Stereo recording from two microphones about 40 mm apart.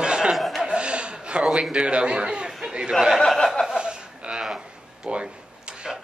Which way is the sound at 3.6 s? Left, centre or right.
Right.